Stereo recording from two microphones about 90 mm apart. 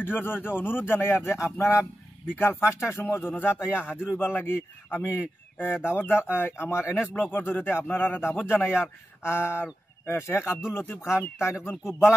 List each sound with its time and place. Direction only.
0.0 s speech: 25° left (ahead or behind)